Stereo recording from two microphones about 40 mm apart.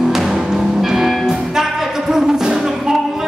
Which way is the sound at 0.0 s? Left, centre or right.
Centre.